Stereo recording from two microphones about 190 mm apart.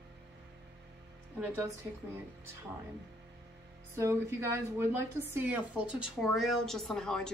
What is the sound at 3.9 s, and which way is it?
A woman's voice, 15° right (ahead or behind).